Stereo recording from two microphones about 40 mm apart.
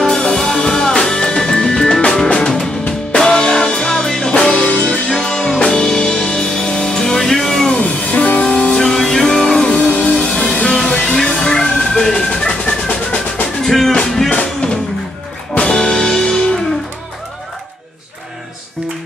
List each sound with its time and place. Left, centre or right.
0.2 s music: centre
7.7 s music: left
8.4 s music: left
9.9 s music: left
10.2 s music: centre
10.6 s music: left
10.9 s music: centre
13.6 s music: centre
14.3 s music: left